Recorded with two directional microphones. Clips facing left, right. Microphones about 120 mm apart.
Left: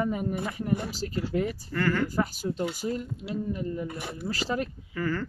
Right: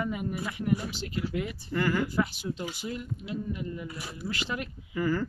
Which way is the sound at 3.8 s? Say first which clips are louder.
Left 3 dB; 50° left (ahead or behind).